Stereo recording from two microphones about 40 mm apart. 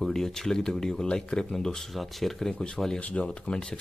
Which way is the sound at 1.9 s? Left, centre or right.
Centre.